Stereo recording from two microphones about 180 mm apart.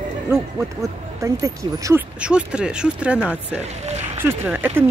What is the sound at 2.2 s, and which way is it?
Speech, 5° right (ahead or behind).